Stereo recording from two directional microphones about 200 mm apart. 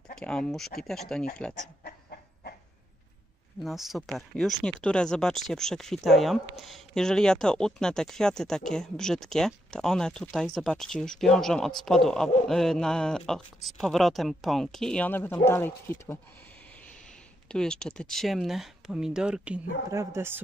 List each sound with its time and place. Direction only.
0.2 s speech: 5° left (ahead or behind)
1.9 s chicken: 50° left (ahead or behind)
3.6 s speech: centre (ahead or behind)
17.5 s speech: 5° left (ahead or behind); by 20.3 s 15° right (ahead or behind)